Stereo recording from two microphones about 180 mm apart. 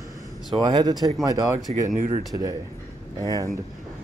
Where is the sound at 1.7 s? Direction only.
45° right (ahead or behind).